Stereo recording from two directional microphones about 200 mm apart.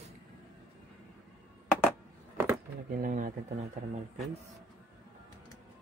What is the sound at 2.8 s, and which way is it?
Speech, 45° right (ahead or behind).